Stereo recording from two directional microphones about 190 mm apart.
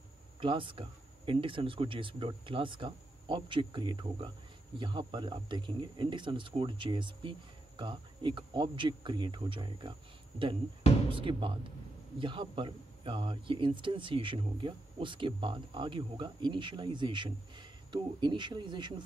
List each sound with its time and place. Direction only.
0.4 s speech: 25° right (ahead or behind)
11.1 s speech: 25° right (ahead or behind)